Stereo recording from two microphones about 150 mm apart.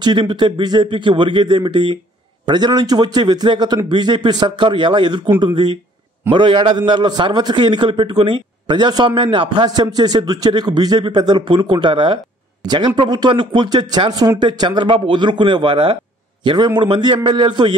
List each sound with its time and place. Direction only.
0.0 s a man's voice: 30° right (ahead or behind)